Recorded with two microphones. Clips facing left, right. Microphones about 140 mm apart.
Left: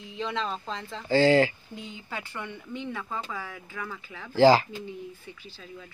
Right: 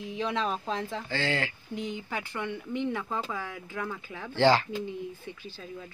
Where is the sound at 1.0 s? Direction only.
40° left (ahead or behind).